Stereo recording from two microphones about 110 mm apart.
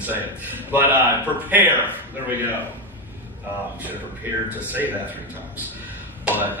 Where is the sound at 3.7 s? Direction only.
15° right (ahead or behind).